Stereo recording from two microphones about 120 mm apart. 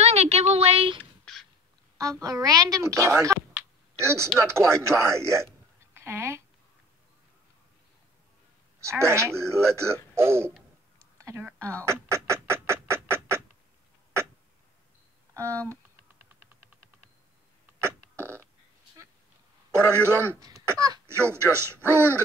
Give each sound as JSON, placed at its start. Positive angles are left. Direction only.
{"t": 0.0, "sound": "a sound", "side_deg": -65}
{"t": 2.0, "sound": "speech", "side_deg": -30}
{"t": 8.8, "sound": "speech", "side_deg": -20}
{"t": 11.1, "sound": "a sound", "side_deg": -25}
{"t": 11.8, "sound": "duck", "side_deg": -25}
{"t": 15.3, "sound": "speech", "side_deg": -25}
{"t": 17.8, "sound": "fart", "side_deg": -20}
{"t": 19.9, "sound": "speech", "side_deg": -20}
{"t": 20.4, "sound": "speech", "side_deg": -30}